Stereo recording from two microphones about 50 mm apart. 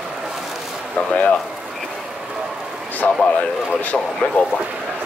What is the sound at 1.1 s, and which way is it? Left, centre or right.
Speech, left.